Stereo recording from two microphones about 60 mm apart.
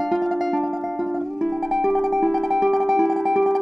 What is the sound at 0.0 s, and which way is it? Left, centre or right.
Music, centre.